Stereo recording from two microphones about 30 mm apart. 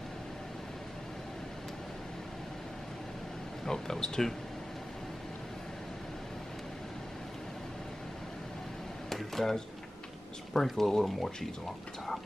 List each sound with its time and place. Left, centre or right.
3.6 s speech: centre
9.1 s a sound: centre
10.5 s speech: centre